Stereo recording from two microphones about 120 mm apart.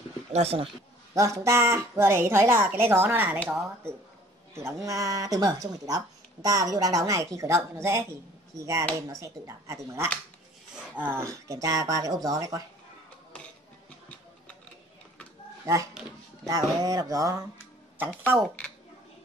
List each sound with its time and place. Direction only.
0.3 s speech: 60° right (ahead or behind)
1.1 s a woman's voice: 25° right (ahead or behind)
4.6 s speech: 25° right (ahead or behind)
15.6 s speech: 25° right (ahead or behind)
17.9 s speech: 15° right (ahead or behind)